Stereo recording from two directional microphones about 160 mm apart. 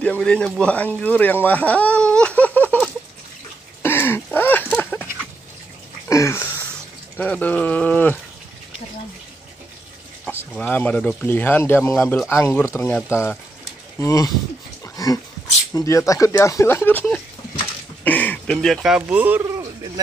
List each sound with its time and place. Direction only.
0.0 s speech: 10° left (ahead or behind)
3.8 s a sound: 15° left (ahead or behind)
6.0 s a sound: 20° left (ahead or behind)
7.2 s speech: 10° left (ahead or behind)
10.7 s speech: 10° left (ahead or behind)
15.7 s speech: 20° left (ahead or behind); by 19.4 s 10° right (ahead or behind)